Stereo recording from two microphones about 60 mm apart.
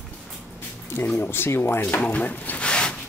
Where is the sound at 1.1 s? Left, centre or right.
Left.